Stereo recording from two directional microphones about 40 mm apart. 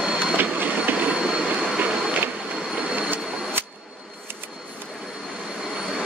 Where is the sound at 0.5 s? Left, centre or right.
Right.